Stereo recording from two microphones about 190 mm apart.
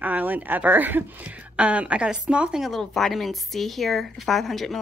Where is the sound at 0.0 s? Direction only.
10° right (ahead or behind).